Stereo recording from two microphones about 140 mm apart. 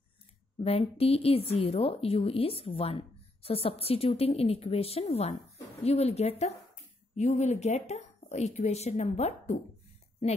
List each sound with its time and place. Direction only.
0.7 s a woman's voice: 45° left (ahead or behind)